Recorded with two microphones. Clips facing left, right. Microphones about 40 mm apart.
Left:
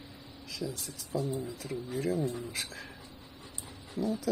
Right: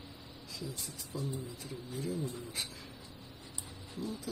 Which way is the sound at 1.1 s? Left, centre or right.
Left.